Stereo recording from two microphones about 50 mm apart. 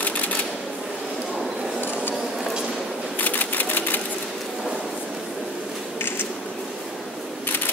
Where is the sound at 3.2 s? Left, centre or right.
Left.